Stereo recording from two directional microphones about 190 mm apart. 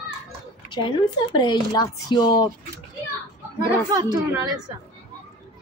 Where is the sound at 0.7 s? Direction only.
25° left (ahead or behind).